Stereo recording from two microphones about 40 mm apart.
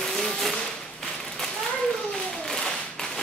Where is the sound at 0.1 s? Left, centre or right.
Centre.